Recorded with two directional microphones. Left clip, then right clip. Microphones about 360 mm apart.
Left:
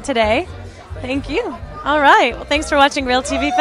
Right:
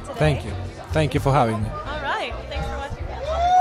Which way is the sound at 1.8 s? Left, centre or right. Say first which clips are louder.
Left 17 dB; left.